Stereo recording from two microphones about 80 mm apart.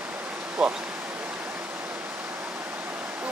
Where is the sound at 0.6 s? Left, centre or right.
Centre.